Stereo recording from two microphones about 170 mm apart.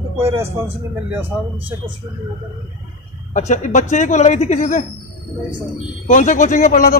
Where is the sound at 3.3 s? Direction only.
45° left (ahead or behind).